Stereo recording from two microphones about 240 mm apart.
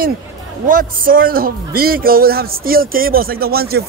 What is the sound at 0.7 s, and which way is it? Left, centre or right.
Speech, right.